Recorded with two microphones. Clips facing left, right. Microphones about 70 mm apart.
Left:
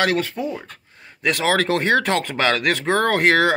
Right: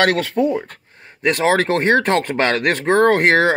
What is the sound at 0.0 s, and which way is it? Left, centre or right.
Speech, right.